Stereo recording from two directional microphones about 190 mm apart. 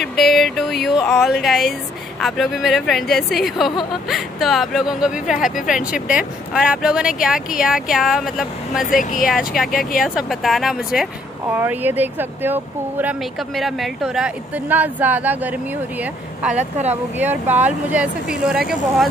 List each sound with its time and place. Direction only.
0.0 s speech: centre (ahead or behind)
16.5 s speech: 35° right (ahead or behind)
17.2 s speech: 10° right (ahead or behind)